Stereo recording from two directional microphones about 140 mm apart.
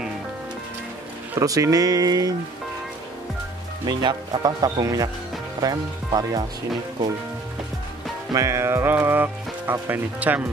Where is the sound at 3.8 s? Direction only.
30° right (ahead or behind).